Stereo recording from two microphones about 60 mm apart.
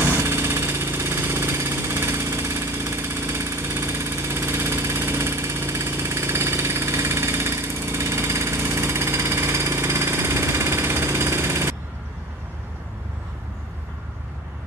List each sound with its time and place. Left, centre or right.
0.2 s engine: right